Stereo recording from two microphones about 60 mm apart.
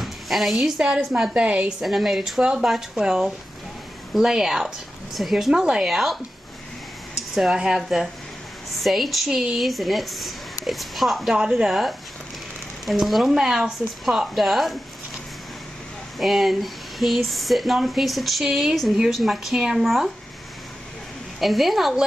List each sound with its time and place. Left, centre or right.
0.0 s a sound: centre
0.7 s a woman's voice: centre
1.8 s a woman's voice: centre
5.5 s speech: centre
7.3 s a woman's voice: centre
12.8 s a woman's voice: centre
16.2 s a woman's voice: centre
21.4 s a woman's voice: centre